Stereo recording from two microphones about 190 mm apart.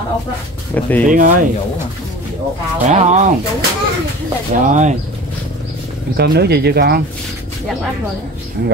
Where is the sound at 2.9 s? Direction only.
40° right (ahead or behind).